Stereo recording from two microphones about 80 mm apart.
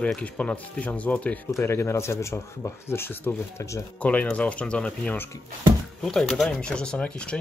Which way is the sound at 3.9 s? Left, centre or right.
Centre.